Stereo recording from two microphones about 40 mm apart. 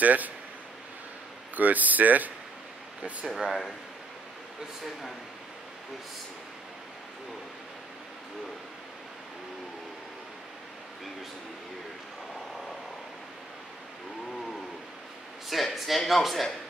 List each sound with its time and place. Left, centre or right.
0.0 s speech: right
1.5 s speech: right
3.3 s speech: centre
15.5 s speech: centre